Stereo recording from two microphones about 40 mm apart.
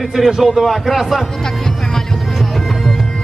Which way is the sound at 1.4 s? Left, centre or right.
Centre.